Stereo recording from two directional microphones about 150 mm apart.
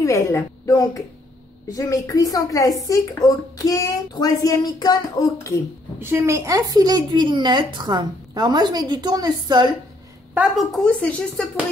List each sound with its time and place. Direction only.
0.0 s speech: 20° left (ahead or behind)
5.9 s a woman's voice: 15° right (ahead or behind)
10.3 s a woman's voice: 10° right (ahead or behind)
11.0 s speech: 10° left (ahead or behind)